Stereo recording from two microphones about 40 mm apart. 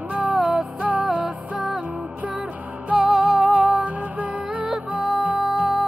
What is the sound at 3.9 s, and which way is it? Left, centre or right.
Music, right.